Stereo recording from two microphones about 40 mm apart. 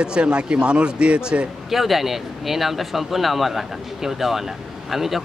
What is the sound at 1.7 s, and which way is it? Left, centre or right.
Speech, centre.